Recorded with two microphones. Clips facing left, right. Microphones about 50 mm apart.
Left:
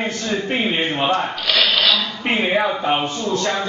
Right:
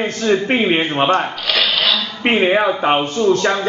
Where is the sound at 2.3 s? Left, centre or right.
Right.